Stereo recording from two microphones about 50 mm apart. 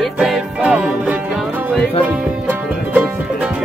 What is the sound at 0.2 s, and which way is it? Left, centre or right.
Music, centre.